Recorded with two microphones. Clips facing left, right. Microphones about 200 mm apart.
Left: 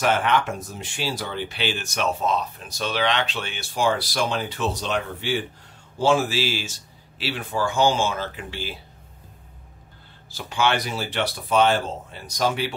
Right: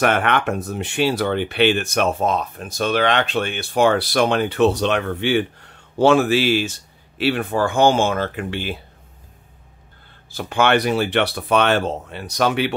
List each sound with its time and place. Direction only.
0.0 s speech: 60° right (ahead or behind)
10.3 s speech: 55° right (ahead or behind)